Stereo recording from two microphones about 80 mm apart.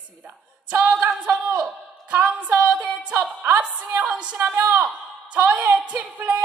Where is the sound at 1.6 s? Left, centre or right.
Centre.